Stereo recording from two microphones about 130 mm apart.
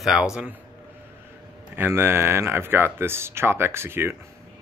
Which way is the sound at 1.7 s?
15° right (ahead or behind).